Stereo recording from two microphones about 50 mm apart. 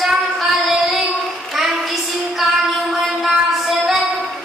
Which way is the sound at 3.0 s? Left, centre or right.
Centre.